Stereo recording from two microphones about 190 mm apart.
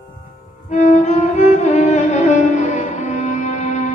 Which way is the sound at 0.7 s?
40° left (ahead or behind).